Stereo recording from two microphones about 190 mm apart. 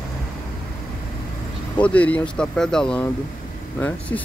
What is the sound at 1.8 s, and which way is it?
Speech, 5° left (ahead or behind).